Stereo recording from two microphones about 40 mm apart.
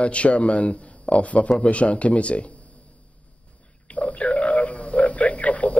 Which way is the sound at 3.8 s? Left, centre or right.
Left.